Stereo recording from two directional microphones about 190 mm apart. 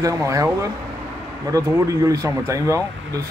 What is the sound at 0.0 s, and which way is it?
A man's voice, 15° right (ahead or behind).